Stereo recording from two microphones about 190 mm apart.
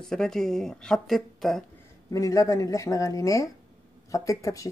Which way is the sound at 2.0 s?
15° left (ahead or behind).